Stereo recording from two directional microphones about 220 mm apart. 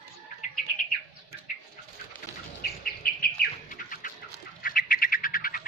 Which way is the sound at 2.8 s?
45° left (ahead or behind).